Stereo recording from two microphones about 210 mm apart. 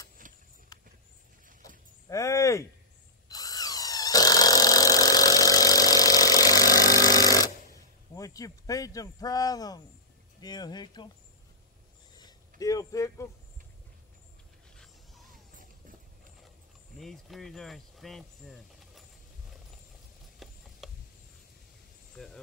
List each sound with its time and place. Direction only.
0.2 s clip-clop: 40° right (ahead or behind)
0.7 s horse: 20° left (ahead or behind)
2.0 s speech: 15° left (ahead or behind)
3.3 s tools: 15° left (ahead or behind)
8.1 s speech: 15° left (ahead or behind)
12.2 s a sound: 20° left (ahead or behind)
14.8 s dog: centre (ahead or behind)
17.0 s speech: centre (ahead or behind)
20.4 s a sound: centre (ahead or behind)
22.1 s speech: centre (ahead or behind)